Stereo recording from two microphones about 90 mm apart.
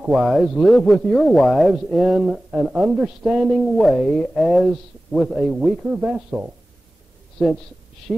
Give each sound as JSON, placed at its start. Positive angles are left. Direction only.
{"t": 0.0, "sound": "a man's voice", "side_deg": -5}
{"t": 3.7, "sound": "speech", "side_deg": 0}
{"t": 5.8, "sound": "a man's voice", "side_deg": -15}
{"t": 7.4, "sound": "speech", "side_deg": 5}